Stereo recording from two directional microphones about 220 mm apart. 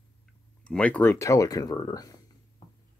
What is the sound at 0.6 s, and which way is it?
Speech, 5° left (ahead or behind).